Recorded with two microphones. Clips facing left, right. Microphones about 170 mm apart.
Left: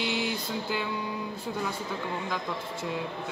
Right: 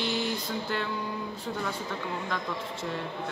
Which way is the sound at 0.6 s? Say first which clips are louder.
Even; 5° left (ahead or behind).